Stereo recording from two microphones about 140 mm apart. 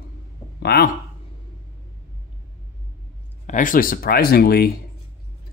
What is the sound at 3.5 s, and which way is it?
Speech, 70° left (ahead or behind).